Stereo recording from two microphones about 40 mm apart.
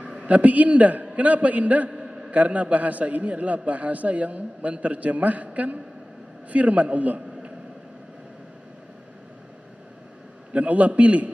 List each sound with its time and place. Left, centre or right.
0.2 s a man's voice: right
1.9 s a sound: centre
2.3 s a man's voice: right
10.5 s a man's voice: right